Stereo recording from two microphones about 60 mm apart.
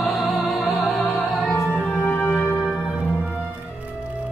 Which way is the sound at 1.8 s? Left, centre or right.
Left.